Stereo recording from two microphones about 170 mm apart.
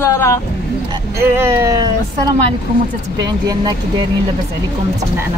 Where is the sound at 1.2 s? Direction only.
15° right (ahead or behind).